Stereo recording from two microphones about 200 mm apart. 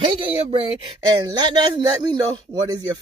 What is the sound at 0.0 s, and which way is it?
Speech, 25° right (ahead or behind).